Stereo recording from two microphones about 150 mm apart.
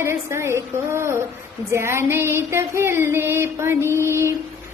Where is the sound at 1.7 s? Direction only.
20° right (ahead or behind).